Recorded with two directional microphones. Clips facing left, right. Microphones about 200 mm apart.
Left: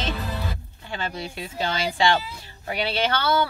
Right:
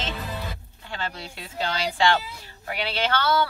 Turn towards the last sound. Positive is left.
turn(degrees=15)  # may be behind; listen again after turning